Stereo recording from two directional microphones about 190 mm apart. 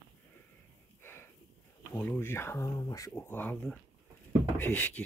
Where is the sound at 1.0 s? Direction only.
10° left (ahead or behind).